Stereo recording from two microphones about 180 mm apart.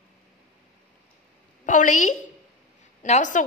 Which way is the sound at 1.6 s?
45° left (ahead or behind).